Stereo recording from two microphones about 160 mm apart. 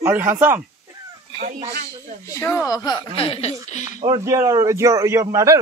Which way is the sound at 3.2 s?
40° left (ahead or behind).